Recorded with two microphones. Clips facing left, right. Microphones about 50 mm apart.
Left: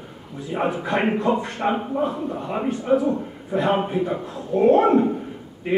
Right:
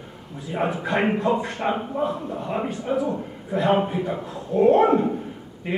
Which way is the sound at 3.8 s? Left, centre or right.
Centre.